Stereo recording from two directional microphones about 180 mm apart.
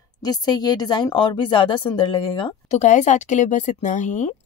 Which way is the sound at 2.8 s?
40° left (ahead or behind).